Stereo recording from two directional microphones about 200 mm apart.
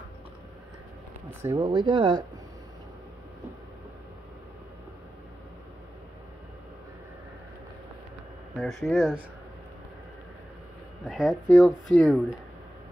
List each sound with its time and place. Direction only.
1.4 s speech: 20° right (ahead or behind)
8.5 s speech: centre (ahead or behind)
11.1 s speech: centre (ahead or behind)